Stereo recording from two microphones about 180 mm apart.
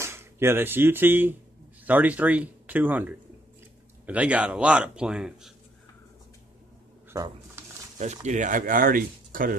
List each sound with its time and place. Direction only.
0.0 s speech: 15° right (ahead or behind)
8.0 s speech: 40° right (ahead or behind)